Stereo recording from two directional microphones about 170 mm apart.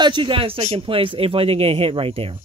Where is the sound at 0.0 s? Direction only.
30° right (ahead or behind).